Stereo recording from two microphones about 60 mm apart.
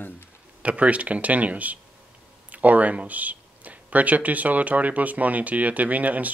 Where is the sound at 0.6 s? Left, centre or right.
Right.